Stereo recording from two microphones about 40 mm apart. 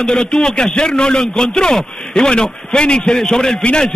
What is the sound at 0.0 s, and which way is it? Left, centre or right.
A man's voice, centre.